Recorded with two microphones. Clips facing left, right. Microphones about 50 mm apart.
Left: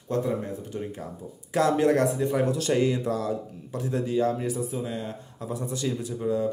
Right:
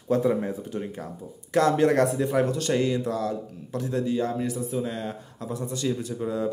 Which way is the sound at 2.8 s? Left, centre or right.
Left.